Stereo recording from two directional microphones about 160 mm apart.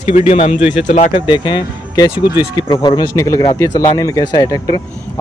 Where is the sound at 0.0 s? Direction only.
35° left (ahead or behind).